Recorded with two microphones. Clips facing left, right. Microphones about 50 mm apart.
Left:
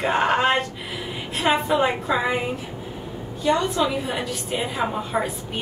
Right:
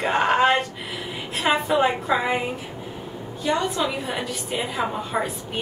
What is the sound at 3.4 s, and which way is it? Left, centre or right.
Speech, centre.